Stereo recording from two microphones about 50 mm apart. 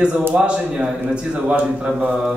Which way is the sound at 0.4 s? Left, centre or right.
Right.